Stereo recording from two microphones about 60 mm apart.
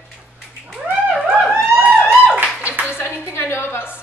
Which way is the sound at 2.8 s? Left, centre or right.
Left.